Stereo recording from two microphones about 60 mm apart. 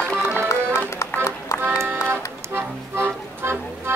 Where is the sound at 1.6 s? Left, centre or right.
Right.